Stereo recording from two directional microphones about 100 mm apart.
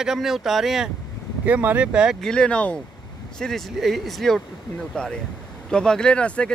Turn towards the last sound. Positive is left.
turn(degrees=10)  # may be behind; listen again after turning